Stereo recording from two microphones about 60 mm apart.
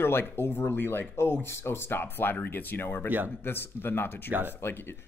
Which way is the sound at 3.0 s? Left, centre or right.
Right.